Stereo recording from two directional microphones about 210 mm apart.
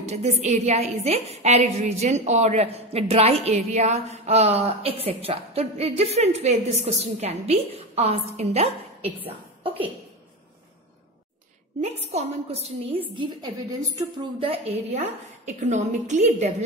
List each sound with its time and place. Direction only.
0.0 s a woman's voice: 30° right (ahead or behind)
11.8 s a woman's voice: 30° right (ahead or behind)